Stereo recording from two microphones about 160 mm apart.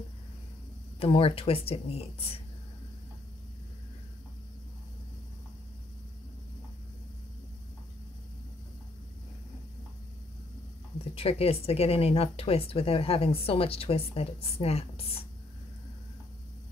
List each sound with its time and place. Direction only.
0.9 s speech: 35° left (ahead or behind)
11.1 s speech: 40° left (ahead or behind)